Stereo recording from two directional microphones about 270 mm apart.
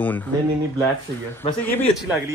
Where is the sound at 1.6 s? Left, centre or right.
Centre.